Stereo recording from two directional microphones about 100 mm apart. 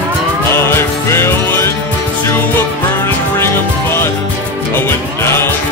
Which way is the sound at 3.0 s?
25° left (ahead or behind).